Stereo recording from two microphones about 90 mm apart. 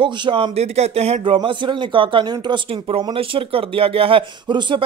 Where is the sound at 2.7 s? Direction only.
90° right.